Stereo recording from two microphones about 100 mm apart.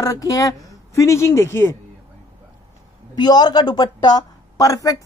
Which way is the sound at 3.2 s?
45° left (ahead or behind).